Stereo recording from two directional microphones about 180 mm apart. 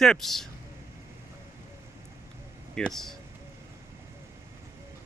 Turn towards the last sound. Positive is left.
turn(degrees=0)  # may be behind; listen again after turning